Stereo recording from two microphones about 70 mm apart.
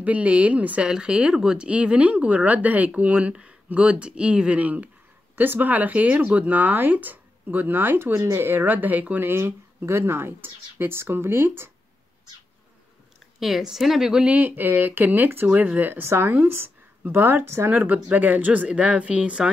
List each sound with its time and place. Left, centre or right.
0.0 s speech: centre
13.4 s speech: centre